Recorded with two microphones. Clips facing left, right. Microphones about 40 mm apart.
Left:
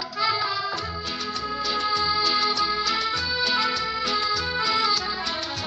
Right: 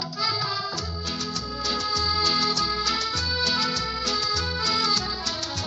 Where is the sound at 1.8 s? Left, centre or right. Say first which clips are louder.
Left 3 dB; left.